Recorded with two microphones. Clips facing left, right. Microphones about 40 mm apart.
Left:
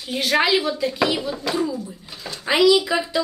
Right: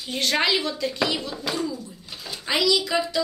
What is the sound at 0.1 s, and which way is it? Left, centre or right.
Speech, centre.